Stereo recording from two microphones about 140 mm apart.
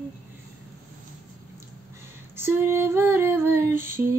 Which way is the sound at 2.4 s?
15° right (ahead or behind).